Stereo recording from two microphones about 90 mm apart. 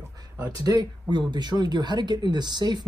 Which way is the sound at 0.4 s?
45° right (ahead or behind).